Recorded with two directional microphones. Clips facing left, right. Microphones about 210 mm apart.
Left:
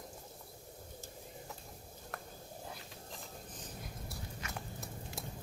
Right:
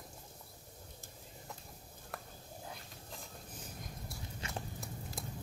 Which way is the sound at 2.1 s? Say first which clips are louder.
Left 1 dB; centre (ahead or behind).